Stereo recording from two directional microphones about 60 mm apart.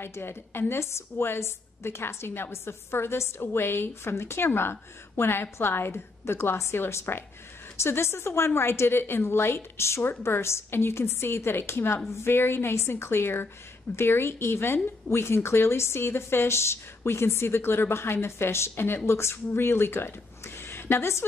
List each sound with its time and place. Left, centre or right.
0.0 s a woman's voice: left